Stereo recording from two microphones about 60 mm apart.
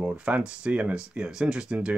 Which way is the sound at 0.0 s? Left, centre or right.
Right.